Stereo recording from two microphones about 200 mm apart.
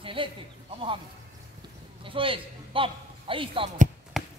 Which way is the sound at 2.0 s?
25° right (ahead or behind).